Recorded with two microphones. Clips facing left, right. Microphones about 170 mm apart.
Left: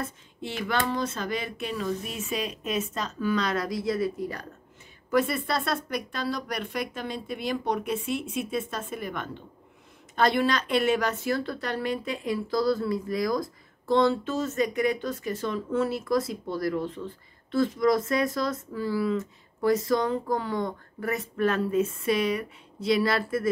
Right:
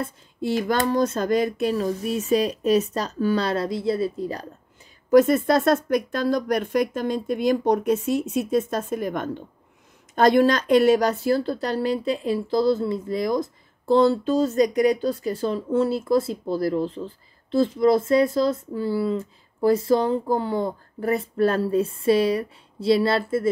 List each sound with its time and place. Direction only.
0.0 s speech: 35° right (ahead or behind)
5.1 s speech: 45° right (ahead or behind); by 23.5 s 25° right (ahead or behind)